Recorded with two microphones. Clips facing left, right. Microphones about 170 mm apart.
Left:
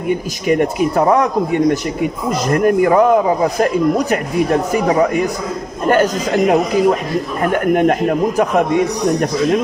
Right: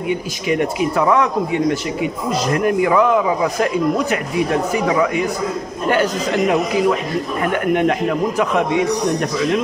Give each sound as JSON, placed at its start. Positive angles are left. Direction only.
{"t": 0.1, "sound": "a man's voice", "side_deg": 45}